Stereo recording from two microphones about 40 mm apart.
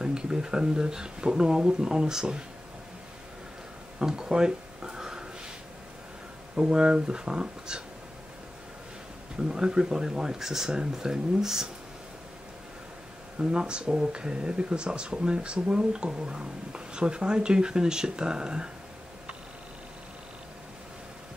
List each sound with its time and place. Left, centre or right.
0.0 s speech: centre
4.0 s a sound: centre
6.5 s speech: right
9.4 s speech: centre
13.4 s speech: right